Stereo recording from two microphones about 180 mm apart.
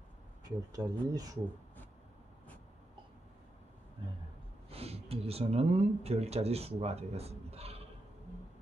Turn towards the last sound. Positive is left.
turn(degrees=-35)  # may be behind; listen again after turning